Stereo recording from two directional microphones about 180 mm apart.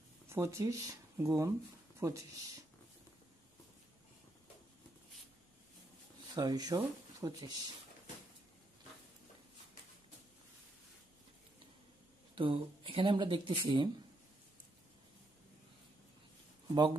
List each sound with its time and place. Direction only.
0.3 s speech: 15° right (ahead or behind)
6.3 s speech: 20° right (ahead or behind)
12.4 s speech: 30° right (ahead or behind)